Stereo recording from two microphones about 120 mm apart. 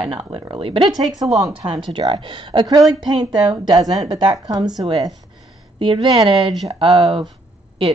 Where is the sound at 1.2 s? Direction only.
Centre (ahead or behind).